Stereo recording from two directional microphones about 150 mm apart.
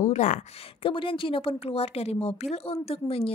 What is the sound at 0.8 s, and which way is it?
Speech, 35° left (ahead or behind).